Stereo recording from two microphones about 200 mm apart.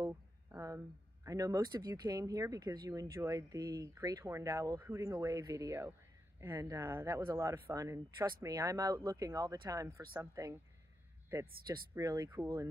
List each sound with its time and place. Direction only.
0.0 s speech: 15° right (ahead or behind)
11.6 s speech: 20° right (ahead or behind)